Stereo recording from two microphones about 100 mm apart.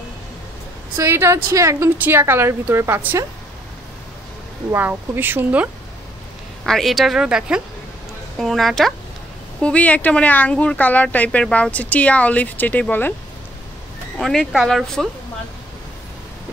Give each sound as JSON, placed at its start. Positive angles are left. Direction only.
{"t": 0.9, "sound": "a woman's voice", "side_deg": -25}
{"t": 4.7, "sound": "a woman's voice", "side_deg": -20}
{"t": 6.6, "sound": "a woman's voice", "side_deg": 0}
{"t": 8.4, "sound": "a woman's voice", "side_deg": 0}
{"t": 9.6, "sound": "speech", "side_deg": 10}
{"t": 14.1, "sound": "a woman's voice", "side_deg": 5}